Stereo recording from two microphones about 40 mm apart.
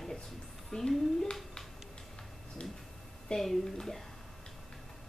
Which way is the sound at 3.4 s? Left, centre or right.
Centre.